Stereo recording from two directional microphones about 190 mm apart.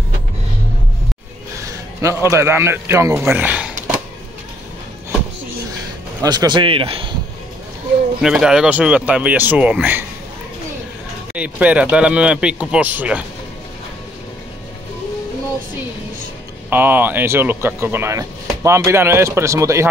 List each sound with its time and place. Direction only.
1.6 s a man's voice: 15° right (ahead or behind)
6.2 s a man's voice: 20° right (ahead or behind)
8.2 s speech: 5° right (ahead or behind)
11.3 s speech: 5° right (ahead or behind)
16.7 s speech: 10° right (ahead or behind)